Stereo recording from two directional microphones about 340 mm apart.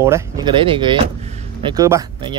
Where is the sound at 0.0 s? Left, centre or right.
Centre.